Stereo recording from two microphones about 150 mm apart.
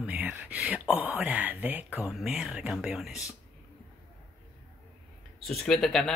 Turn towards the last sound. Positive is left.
turn(degrees=5)  # may be behind; listen again after turning